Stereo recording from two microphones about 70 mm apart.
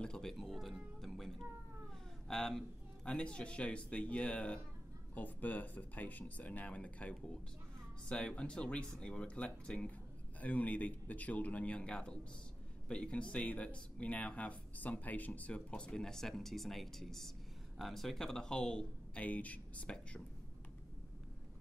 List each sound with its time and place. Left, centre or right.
0.0 s speech: centre
1.0 s music: centre
2.2 s speech: centre